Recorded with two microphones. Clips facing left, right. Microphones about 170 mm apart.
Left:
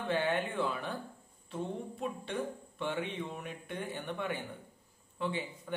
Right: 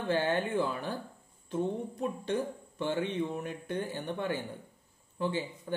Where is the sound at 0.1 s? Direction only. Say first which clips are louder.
Right 3 dB; 40° right (ahead or behind).